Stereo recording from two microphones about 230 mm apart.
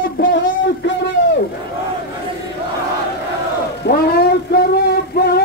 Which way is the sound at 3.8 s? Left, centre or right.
Left.